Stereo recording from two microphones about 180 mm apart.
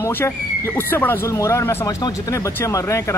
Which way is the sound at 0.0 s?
10° left (ahead or behind).